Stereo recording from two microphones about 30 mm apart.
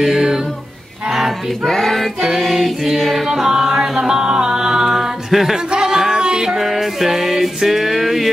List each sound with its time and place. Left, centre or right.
1.7 s female singing: centre
2.3 s music: centre
3.4 s music: centre
4.0 s music: right
5.3 s music: centre
5.7 s a sound: right
6.1 s music: right
6.6 s music: centre